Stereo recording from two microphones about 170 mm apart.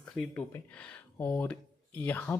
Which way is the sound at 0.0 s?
5° left (ahead or behind).